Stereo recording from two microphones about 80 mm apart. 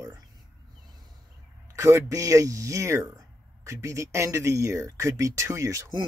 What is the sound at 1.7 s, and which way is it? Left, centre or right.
Speech, right.